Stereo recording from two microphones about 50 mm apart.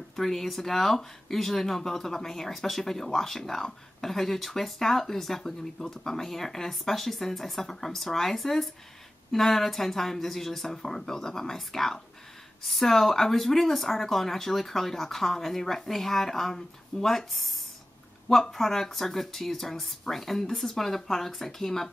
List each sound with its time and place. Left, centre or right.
0.1 s speech: centre